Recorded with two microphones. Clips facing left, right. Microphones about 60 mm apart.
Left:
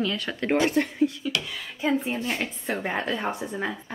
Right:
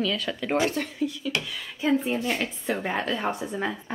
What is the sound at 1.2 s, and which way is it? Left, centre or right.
Speech, left.